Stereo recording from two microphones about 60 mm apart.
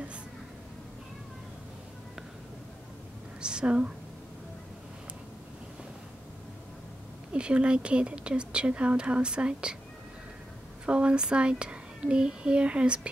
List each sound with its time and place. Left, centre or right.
3.3 s a sound: centre
7.3 s a woman's voice: centre
10.9 s a woman's voice: centre